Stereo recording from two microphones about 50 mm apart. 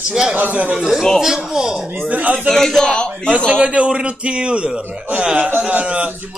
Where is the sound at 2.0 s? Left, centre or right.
Right.